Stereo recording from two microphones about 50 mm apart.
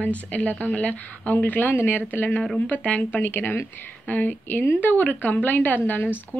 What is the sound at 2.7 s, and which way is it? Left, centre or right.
Speech, left.